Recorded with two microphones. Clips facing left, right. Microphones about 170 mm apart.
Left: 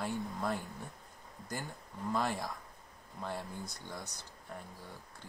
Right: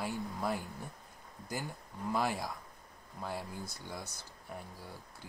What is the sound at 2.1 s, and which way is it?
Speech, 5° right (ahead or behind).